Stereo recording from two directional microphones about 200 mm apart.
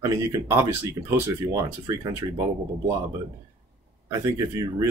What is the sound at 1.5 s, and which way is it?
Speech, 15° right (ahead or behind).